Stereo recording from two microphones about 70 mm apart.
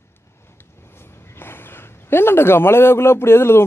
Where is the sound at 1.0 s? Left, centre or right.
Left.